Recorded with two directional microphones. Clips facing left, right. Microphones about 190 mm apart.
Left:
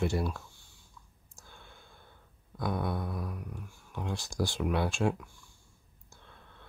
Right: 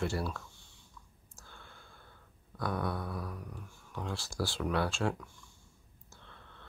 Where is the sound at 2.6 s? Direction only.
15° left (ahead or behind).